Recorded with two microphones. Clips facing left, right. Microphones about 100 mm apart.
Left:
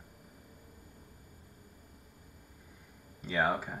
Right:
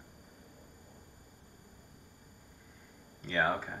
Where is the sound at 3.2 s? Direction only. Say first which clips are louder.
Left 1 dB; 5° left (ahead or behind).